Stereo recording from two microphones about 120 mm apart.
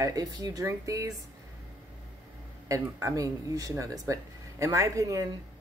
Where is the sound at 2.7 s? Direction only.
25° right (ahead or behind).